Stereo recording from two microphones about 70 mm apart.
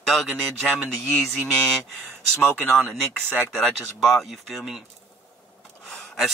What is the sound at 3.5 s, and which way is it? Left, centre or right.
Speech, centre.